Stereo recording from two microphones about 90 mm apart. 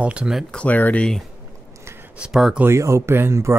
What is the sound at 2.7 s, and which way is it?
Speech, 35° right (ahead or behind).